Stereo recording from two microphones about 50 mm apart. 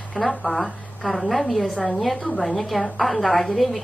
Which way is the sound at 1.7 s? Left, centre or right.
Centre.